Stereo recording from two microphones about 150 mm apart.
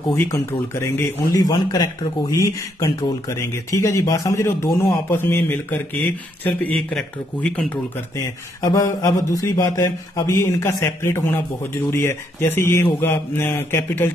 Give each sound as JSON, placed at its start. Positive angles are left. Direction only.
{"t": 0.1, "sound": "speech", "side_deg": 20}
{"t": 4.8, "sound": "mantra", "side_deg": 15}
{"t": 8.6, "sound": "mantra", "side_deg": 20}